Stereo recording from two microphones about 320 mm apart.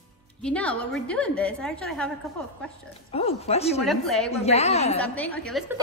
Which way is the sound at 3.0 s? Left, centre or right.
Centre.